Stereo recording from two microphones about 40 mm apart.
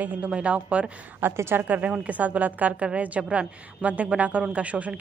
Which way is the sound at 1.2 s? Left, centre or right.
Right.